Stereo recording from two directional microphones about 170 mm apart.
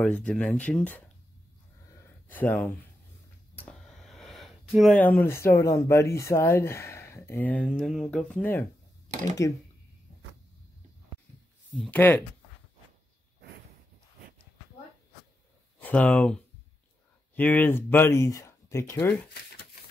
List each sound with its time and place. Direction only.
0.0 s speech: 5° left (ahead or behind)
2.2 s speech: 10° left (ahead or behind)
3.5 s a sound: 5° left (ahead or behind)
5.0 s speech: 10° left (ahead or behind)
11.7 s speech: 10° left (ahead or behind)
15.8 s speech: 5° left (ahead or behind)
17.4 s speech: 10° left (ahead or behind)